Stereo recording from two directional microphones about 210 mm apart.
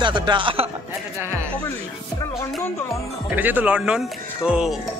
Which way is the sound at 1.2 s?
10° right (ahead or behind).